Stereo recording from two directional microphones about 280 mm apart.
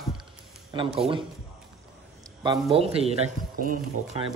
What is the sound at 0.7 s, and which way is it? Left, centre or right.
Speech, centre.